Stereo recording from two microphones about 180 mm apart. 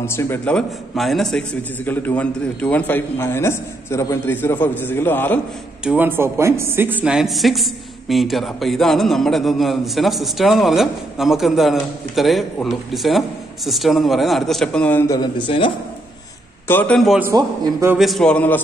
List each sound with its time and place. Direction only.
0.0 s a man's voice: 15° left (ahead or behind)
5.9 s speech: 10° right (ahead or behind); by 15.1 s 10° left (ahead or behind)
15.1 s speech: 25° left (ahead or behind)
16.6 s speech: 10° left (ahead or behind)
17.2 s a man's voice: 20° right (ahead or behind)
17.9 s speech: centre (ahead or behind)